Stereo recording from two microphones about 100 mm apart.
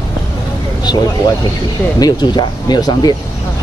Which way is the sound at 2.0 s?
45° left (ahead or behind).